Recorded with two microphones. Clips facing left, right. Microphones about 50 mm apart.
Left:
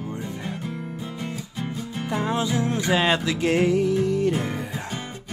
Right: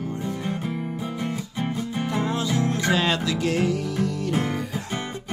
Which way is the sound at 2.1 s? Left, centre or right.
Left.